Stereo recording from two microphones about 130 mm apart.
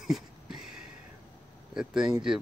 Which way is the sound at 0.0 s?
5° right (ahead or behind).